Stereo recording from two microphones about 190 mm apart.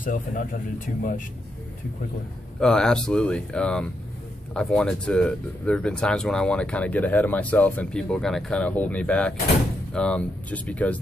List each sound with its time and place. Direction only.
0.0 s speech: 45° left (ahead or behind)
2.6 s speech: 5° left (ahead or behind)